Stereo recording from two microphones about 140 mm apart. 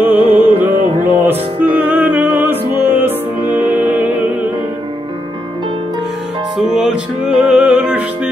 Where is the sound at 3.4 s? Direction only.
30° left (ahead or behind).